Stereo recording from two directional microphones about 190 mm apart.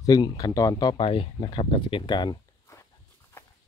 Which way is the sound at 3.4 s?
10° left (ahead or behind).